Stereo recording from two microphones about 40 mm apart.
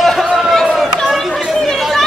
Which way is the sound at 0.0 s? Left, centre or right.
Centre.